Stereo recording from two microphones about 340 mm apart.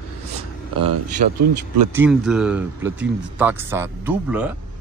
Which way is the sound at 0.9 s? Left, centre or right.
Right.